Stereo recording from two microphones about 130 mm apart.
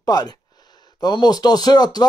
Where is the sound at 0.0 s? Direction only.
30° left (ahead or behind).